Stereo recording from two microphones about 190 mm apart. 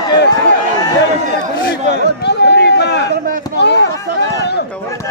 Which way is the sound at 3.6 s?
65° left (ahead or behind).